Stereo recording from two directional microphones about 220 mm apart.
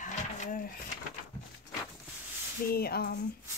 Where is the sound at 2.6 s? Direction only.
45° left (ahead or behind).